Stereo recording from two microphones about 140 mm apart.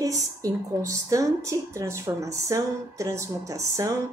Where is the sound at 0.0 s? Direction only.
25° right (ahead or behind).